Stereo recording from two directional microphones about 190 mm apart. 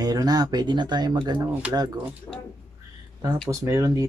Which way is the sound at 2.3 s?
5° left (ahead or behind).